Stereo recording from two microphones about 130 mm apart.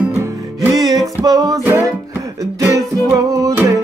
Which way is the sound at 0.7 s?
30° right (ahead or behind).